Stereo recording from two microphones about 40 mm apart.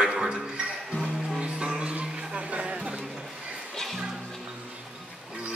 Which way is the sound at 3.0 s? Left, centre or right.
Centre.